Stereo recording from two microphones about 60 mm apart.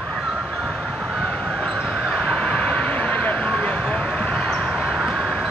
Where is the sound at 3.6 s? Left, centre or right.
Left.